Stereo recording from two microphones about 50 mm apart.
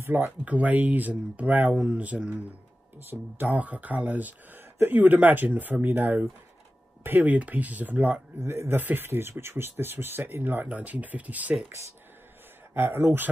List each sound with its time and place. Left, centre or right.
0.0 s speech: right
0.5 s speech: right
3.1 s speech: right
3.5 s speech: right
8.4 s speech: right
8.7 s speech: right
12.7 s speech: right